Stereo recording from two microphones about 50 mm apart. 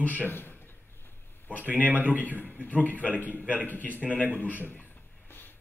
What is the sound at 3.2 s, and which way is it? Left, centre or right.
Speech, left.